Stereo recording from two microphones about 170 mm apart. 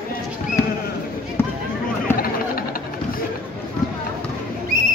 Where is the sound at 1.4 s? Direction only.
15° left (ahead or behind).